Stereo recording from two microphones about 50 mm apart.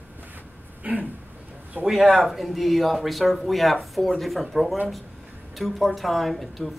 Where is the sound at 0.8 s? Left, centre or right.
Right.